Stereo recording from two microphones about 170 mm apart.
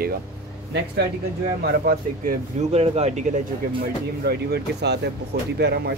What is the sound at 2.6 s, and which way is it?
Speech, 40° right (ahead or behind).